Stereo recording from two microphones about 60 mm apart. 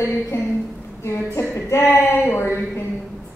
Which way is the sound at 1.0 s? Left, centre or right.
Left.